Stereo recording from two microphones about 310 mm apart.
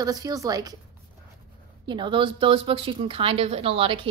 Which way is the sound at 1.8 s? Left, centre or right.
Centre.